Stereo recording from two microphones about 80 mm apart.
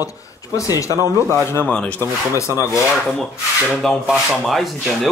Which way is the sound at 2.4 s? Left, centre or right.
Left.